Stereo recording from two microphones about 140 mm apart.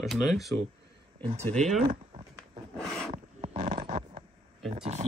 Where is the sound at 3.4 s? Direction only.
50° right (ahead or behind).